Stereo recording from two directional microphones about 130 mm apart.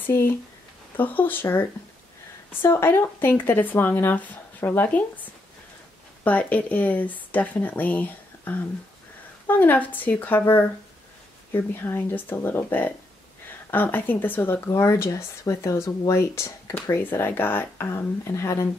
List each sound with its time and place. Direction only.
0.0 s speech: 15° left (ahead or behind)